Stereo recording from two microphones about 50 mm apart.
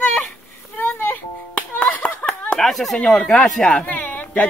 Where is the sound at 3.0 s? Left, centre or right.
Centre.